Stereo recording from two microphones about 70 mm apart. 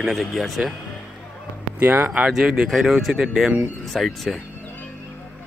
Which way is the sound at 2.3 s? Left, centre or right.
Centre.